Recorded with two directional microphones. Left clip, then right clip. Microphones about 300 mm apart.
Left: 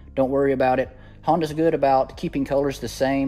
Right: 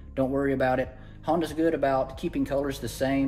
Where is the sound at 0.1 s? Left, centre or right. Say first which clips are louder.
Left 6 dB; left.